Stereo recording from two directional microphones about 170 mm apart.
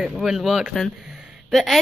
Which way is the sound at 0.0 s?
Centre (ahead or behind).